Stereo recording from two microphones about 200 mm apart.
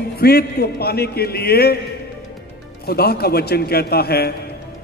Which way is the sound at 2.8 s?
50° left (ahead or behind).